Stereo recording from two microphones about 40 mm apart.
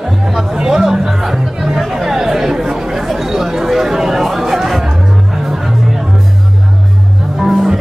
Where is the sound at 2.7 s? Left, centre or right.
Centre.